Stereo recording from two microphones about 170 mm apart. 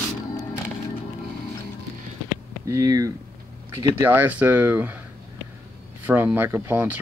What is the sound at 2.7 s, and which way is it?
Speech, 20° right (ahead or behind).